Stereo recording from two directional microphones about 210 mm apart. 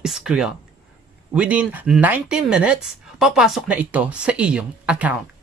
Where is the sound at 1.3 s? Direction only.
5° right (ahead or behind).